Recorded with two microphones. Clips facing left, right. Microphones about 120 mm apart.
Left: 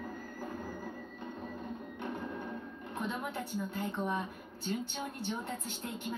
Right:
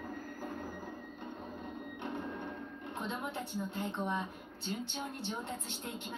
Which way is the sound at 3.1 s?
20° right (ahead or behind).